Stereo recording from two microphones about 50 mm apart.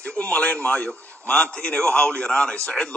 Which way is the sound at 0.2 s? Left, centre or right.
Left.